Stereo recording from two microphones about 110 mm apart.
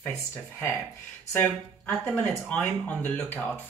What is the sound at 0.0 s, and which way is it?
Speech, 25° left (ahead or behind).